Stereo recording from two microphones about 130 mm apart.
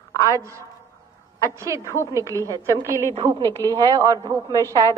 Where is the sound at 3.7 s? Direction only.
25° right (ahead or behind).